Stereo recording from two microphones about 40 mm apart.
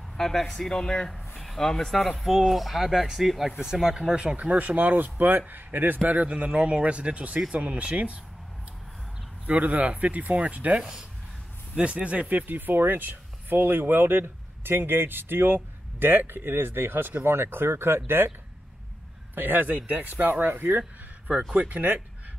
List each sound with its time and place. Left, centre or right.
0.2 s speech: centre
2.1 s speech: centre
3.8 s speech: centre
4.6 s a man's voice: right
9.5 s a man's voice: right
10.8 s speech: centre
11.7 s speech: right
19.3 s speech: right
20.4 s speech: right
21.5 s a man's voice: right